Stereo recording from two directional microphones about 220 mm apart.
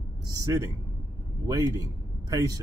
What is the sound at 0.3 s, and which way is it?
A man's voice, 15° right (ahead or behind).